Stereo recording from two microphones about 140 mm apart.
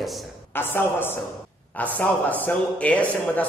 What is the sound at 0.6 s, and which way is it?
A man's voice, 15° left (ahead or behind).